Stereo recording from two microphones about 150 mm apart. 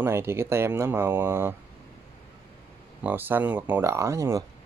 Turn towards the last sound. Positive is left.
turn(degrees=-20)  # may be behind; listen again after turning